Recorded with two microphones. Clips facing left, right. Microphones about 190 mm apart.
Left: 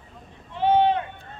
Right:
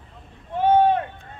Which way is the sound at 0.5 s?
50° right (ahead or behind).